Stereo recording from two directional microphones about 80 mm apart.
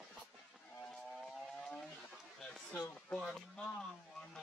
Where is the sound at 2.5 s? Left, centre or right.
Centre.